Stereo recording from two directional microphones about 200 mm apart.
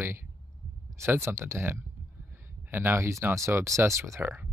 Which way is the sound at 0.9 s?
15° right (ahead or behind).